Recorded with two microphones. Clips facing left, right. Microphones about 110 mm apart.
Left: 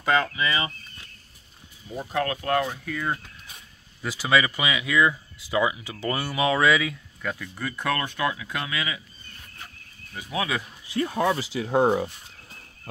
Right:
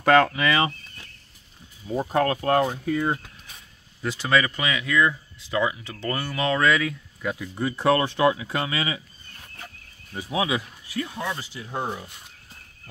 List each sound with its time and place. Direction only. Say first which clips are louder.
0.0 s speech: right 5 dB; 60° right (ahead or behind)
2.0 s speech: right 5 dB; 40° right (ahead or behind)
4.0 s speech: even; 5° left (ahead or behind)
7.2 s speech: right 2 dB; 10° right (ahead or behind)
7.5 s speech: right 8 dB; 25° right (ahead or behind)
10.1 s speech: right 3 dB; 20° right (ahead or behind)
11.1 s speech: left 7 dB; 65° left (ahead or behind); by 12.1 s 90° left